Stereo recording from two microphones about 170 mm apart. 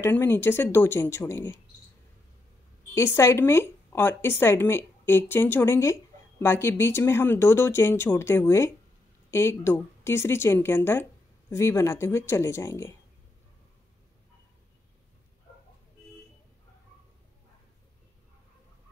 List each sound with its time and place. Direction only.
0.0 s speech: 15° left (ahead or behind)
2.9 s speech: 15° left (ahead or behind)